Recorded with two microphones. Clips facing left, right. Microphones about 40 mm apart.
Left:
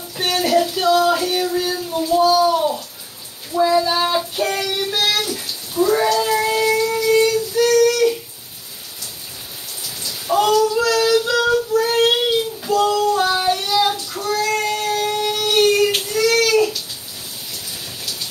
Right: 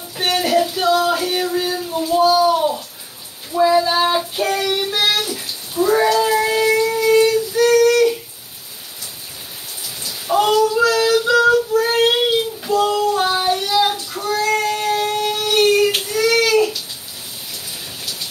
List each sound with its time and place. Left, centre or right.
0.2 s a sound: centre
3.5 s child singing: centre
4.9 s bathtub: centre
5.2 s bathtub: centre
6.3 s music: centre
10.0 s raindrop: centre
10.7 s child singing: centre
12.3 s a sound: centre
13.9 s child singing: centre
14.6 s a sound: centre
15.3 s child singing: centre
16.2 s baby cry: centre